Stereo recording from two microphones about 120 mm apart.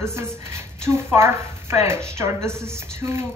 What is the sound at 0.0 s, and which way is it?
Speech, 20° right (ahead or behind).